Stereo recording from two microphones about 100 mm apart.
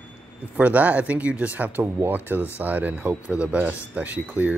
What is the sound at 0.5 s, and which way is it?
Speech, 15° right (ahead or behind).